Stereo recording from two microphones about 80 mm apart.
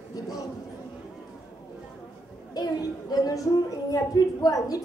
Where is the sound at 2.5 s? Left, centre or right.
Left.